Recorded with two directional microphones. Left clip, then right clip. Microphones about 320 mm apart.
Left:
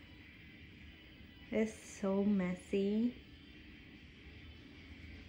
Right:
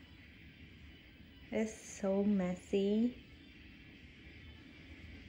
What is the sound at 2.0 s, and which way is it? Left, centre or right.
Speech, centre.